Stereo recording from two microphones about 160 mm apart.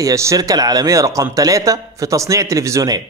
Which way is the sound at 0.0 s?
20° right (ahead or behind).